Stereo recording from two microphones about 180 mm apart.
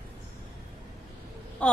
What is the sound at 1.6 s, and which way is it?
Speech, 5° left (ahead or behind).